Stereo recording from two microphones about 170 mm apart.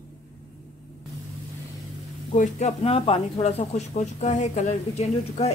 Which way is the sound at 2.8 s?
35° left (ahead or behind).